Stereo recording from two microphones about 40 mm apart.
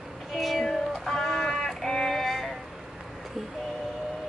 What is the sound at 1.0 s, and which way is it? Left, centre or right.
Music, centre.